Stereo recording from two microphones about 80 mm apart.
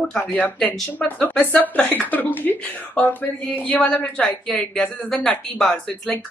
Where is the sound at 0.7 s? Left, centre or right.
Left.